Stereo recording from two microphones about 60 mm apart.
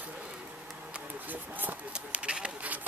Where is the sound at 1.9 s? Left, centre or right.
Centre.